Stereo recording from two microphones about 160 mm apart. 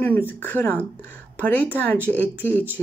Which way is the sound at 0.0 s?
10° left (ahead or behind).